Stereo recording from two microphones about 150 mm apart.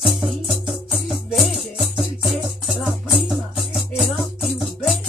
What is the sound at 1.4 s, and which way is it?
Music, centre (ahead or behind).